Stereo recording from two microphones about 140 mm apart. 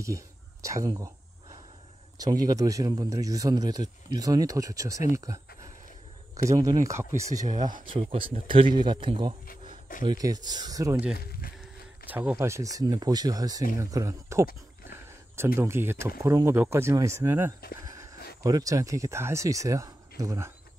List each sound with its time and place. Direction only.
0.0 s speech: 20° right (ahead or behind)
2.1 s speech: 25° right (ahead or behind)
6.6 s speech: 25° right (ahead or behind)
7.9 s speech: 40° right (ahead or behind)
11.1 s speech: 90° left
12.1 s speech: 10° right (ahead or behind)
17.7 s a sound: 25° right (ahead or behind)
18.4 s speech: 25° right (ahead or behind)